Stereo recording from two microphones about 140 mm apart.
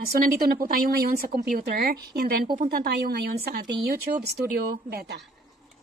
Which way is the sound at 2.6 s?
90° right.